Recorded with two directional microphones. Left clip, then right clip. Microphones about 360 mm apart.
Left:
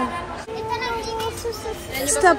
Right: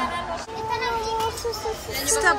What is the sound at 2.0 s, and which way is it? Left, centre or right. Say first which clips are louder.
Female singing: left 4 dB; centre.